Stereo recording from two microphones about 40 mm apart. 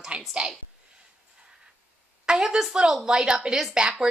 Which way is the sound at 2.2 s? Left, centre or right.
Centre.